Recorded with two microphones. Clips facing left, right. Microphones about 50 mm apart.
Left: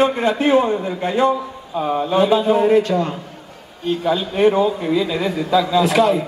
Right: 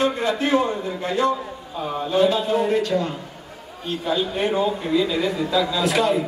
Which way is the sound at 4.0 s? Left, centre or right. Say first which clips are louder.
Left 6 dB; left.